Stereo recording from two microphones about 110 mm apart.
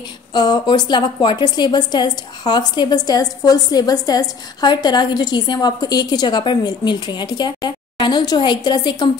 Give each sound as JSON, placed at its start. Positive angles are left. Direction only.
{"t": 0.3, "sound": "a woman's voice", "side_deg": 40}